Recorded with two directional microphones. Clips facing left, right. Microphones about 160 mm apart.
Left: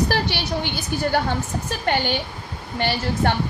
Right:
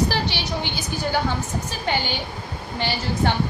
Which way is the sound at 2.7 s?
55° left (ahead or behind).